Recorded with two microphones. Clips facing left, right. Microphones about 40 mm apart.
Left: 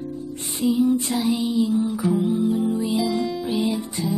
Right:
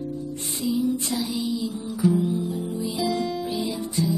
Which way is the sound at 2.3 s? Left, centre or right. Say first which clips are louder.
Left 7 dB; left.